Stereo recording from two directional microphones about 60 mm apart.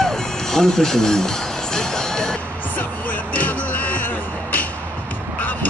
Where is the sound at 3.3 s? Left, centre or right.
Left.